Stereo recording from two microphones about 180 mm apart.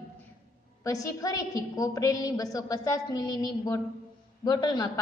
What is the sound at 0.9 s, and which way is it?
A woman's voice, 20° left (ahead or behind).